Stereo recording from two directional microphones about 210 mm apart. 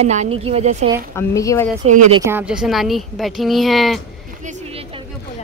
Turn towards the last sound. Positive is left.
turn(degrees=-30)  # may be behind; listen again after turning